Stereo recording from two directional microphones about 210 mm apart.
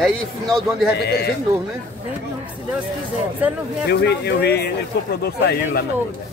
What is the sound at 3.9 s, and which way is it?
Speech, 50° left (ahead or behind).